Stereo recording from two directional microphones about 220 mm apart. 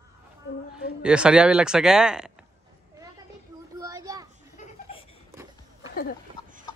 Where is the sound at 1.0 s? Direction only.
5° right (ahead or behind).